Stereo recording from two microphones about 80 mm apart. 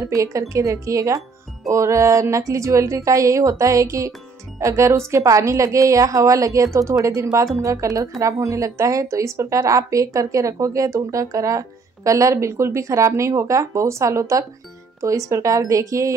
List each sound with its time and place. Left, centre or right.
0.1 s a woman's voice: right